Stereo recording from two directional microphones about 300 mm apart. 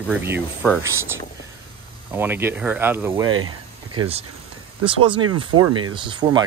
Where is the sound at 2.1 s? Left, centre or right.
Centre.